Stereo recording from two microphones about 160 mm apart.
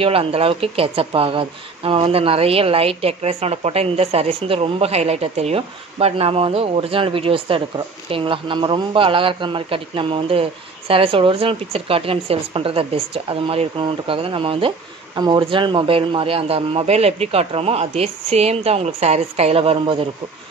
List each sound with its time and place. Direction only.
0.0 s speech: 35° right (ahead or behind)